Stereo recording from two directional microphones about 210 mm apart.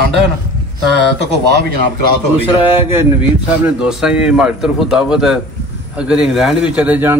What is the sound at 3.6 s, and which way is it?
A man's voice, 5° right (ahead or behind).